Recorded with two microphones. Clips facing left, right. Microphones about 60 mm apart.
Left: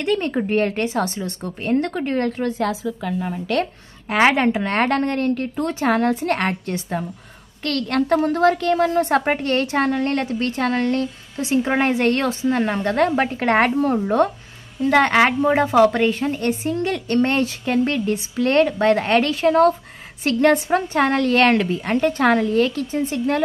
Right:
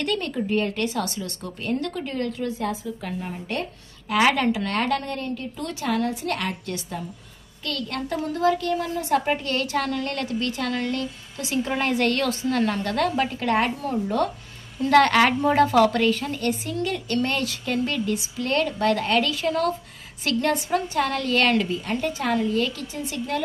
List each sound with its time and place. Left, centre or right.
0.0 s a woman's voice: left
0.3 s a woman's voice: left
0.7 s a woman's voice: left
4.1 s a woman's voice: left
5.6 s a woman's voice: left
7.6 s a woman's voice: left
14.8 s a woman's voice: centre; by 22.5 s left
22.5 s a woman's voice: left